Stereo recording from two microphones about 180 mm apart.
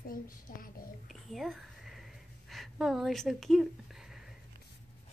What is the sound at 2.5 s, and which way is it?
Speech, centre (ahead or behind).